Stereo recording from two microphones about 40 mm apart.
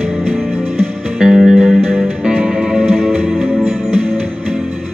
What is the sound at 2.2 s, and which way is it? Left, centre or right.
Music, right.